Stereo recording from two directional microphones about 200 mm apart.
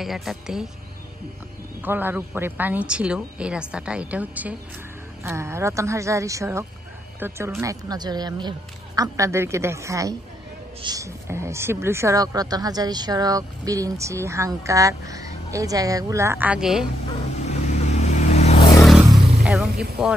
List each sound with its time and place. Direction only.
0.0 s speech: centre (ahead or behind)
1.8 s speech: 10° right (ahead or behind)
17.5 s vehicle: 35° left (ahead or behind)
19.4 s speech: 5° right (ahead or behind)